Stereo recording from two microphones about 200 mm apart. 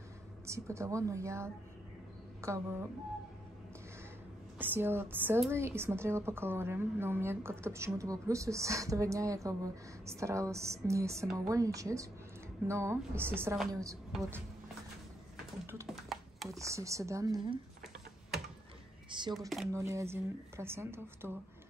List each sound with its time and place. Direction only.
0.5 s a woman's voice: 15° right (ahead or behind)
4.6 s a woman's voice: 10° right (ahead or behind)
15.6 s typing: 10° right (ahead or behind)
15.9 s a sound: centre (ahead or behind)
16.4 s a woman's voice: 15° right (ahead or behind)
19.0 s a sound: 25° right (ahead or behind)
19.7 s a woman's voice: 15° right (ahead or behind)